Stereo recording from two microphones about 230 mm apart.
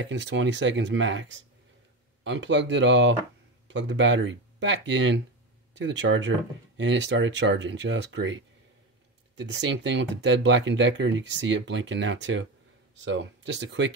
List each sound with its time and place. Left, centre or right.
0.0 s speech: right
9.4 s speech: right